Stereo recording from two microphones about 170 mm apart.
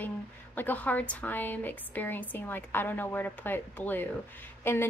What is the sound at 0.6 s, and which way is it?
Speech, 10° left (ahead or behind).